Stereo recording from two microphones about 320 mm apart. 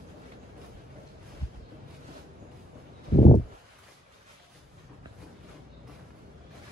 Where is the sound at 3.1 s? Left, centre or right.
Left.